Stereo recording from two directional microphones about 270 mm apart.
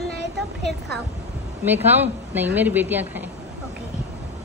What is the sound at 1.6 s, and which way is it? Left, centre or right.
A man's voice, centre.